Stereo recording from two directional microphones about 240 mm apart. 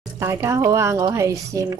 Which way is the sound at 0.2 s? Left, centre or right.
Centre.